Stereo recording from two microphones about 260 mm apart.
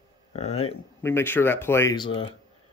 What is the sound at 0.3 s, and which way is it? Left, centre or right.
Speech, left.